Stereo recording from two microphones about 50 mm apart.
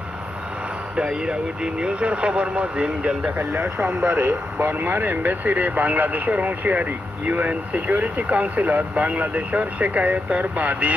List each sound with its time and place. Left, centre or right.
0.9 s speech: centre
3.3 s speech: right